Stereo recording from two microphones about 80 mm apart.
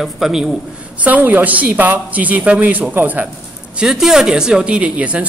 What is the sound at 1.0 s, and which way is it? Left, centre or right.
A woman's voice, right.